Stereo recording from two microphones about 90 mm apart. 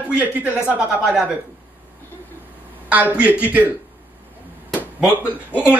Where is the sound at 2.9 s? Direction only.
15° right (ahead or behind).